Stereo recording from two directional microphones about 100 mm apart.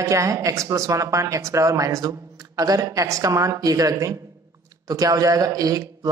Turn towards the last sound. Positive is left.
turn(degrees=-35)  # may be behind; listen again after turning